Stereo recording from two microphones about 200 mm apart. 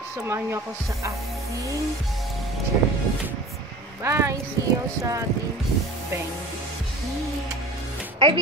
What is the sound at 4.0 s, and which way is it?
Speech, 15° right (ahead or behind).